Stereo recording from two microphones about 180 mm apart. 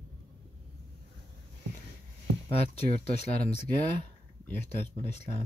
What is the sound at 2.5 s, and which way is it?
Speech, 35° left (ahead or behind).